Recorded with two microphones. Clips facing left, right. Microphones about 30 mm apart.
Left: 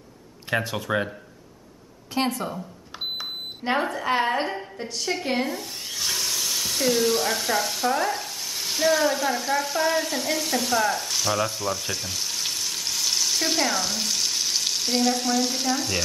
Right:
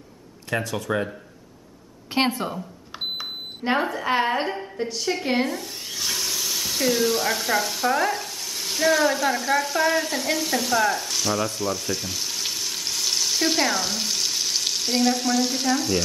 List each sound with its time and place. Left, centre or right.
0.7 s speech: centre
2.1 s speech: right
3.2 s speech: centre